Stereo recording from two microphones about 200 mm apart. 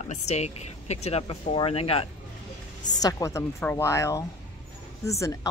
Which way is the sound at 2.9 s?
20° left (ahead or behind).